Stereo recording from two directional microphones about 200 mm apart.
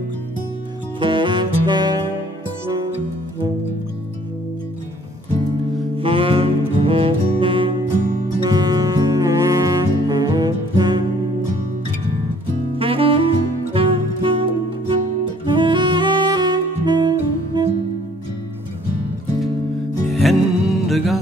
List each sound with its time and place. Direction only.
0.9 s saxophone: 25° right (ahead or behind)
5.9 s music: 25° right (ahead or behind)
12.7 s saxophone: 30° right (ahead or behind)
13.7 s music: 25° right (ahead or behind)
15.4 s saxophone: 25° right (ahead or behind)
20.1 s music: centre (ahead or behind)